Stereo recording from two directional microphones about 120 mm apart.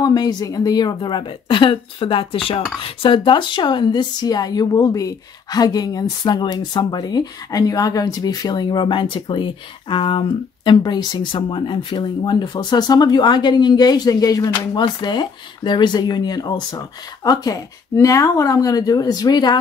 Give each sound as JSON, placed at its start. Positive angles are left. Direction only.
{"t": 0.0, "sound": "a woman's voice", "side_deg": 35}